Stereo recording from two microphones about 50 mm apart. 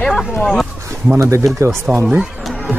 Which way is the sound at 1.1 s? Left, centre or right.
Right.